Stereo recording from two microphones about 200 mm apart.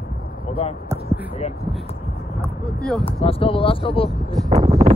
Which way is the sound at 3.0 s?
30° left (ahead or behind).